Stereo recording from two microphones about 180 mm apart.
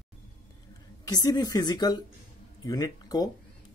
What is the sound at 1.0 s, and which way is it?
Speech, 20° left (ahead or behind).